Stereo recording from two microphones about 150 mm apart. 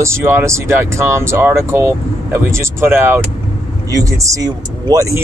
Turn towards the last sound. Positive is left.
turn(degrees=-20)  # may be behind; listen again after turning